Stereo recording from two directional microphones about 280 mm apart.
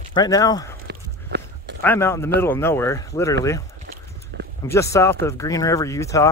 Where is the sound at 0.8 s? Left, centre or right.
Right.